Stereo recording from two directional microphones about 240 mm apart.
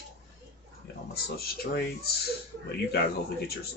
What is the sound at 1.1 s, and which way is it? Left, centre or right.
Speech, left.